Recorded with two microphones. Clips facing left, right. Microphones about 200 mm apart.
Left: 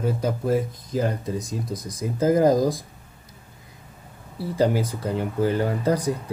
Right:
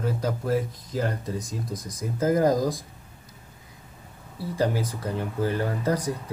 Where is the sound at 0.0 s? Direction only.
20° left (ahead or behind).